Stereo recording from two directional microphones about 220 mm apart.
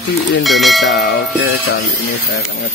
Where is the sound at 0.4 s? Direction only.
Centre (ahead or behind).